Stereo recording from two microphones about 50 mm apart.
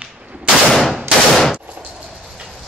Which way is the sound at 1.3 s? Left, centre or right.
Centre.